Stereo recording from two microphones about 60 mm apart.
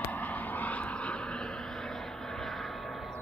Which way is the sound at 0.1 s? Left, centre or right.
Left.